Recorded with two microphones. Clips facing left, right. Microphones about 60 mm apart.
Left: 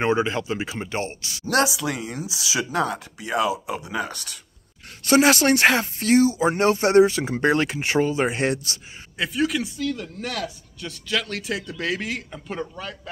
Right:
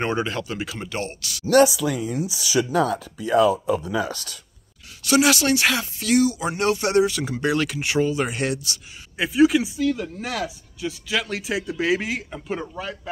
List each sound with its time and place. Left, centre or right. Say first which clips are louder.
0.0 s speech: left 3 dB; centre
1.5 s speech: right 5 dB; left
3.2 s speech: right 6 dB; left
5.0 s speech: left 2 dB; left
9.2 s speech: right 6 dB; centre